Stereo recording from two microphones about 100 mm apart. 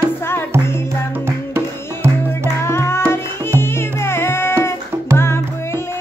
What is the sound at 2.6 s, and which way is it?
Tabla, 25° left (ahead or behind).